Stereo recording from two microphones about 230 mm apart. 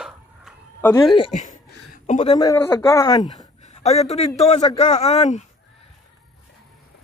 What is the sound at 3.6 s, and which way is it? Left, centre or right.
A man's voice, left.